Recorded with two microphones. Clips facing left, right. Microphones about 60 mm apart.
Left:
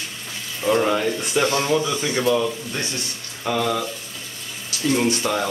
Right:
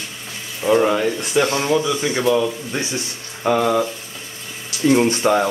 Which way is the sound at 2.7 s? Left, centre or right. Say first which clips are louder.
Right 3 dB; centre.